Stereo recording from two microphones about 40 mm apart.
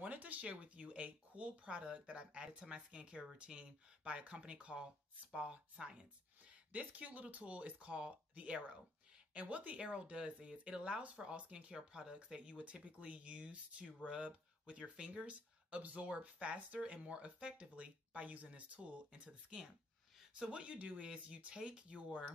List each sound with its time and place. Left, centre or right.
0.0 s speech: right
2.4 s speech: right
6.7 s speech: right